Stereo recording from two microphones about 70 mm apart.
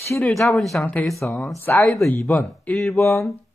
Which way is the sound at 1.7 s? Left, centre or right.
Left.